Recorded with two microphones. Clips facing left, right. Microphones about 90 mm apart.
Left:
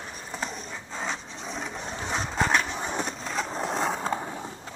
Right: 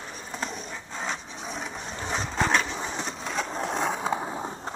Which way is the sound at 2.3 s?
5° left (ahead or behind).